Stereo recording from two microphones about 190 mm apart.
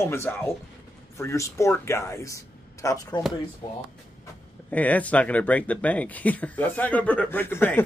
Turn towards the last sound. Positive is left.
turn(degrees=10)  # may be behind; listen again after turning